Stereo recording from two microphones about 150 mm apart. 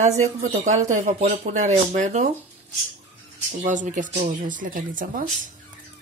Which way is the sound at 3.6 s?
60° right (ahead or behind).